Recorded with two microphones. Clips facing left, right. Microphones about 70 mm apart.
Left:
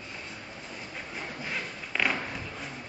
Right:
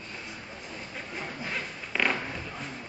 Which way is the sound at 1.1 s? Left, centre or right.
Centre.